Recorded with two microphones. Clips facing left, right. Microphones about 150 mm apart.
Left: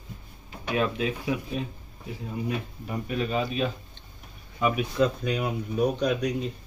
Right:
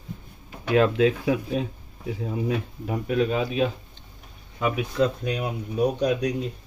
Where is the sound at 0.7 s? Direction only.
85° right.